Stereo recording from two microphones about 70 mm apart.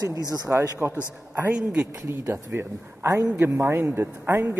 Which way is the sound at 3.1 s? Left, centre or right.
Right.